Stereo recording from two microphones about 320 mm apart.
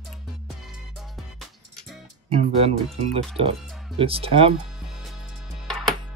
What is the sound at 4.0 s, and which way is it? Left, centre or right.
Speech, centre.